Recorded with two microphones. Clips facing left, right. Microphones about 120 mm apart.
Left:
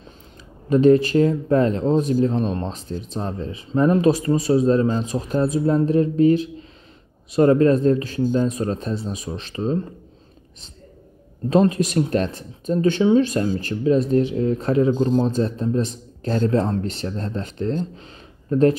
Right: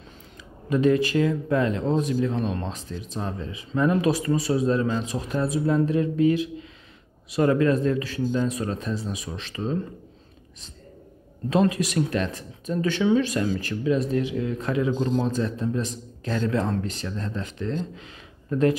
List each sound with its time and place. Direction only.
0.7 s speech: 30° left (ahead or behind)
11.4 s speech: 30° left (ahead or behind)